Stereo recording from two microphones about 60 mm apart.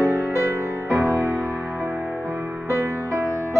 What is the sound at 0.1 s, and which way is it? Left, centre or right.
Music, right.